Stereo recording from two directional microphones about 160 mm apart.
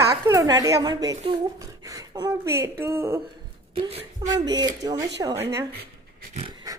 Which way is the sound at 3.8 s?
35° right (ahead or behind).